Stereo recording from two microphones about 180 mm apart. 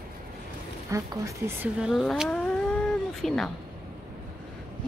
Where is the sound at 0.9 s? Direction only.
15° right (ahead or behind).